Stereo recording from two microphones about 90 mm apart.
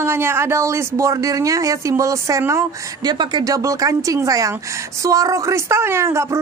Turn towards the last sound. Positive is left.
turn(degrees=-30)  # may be behind; listen again after turning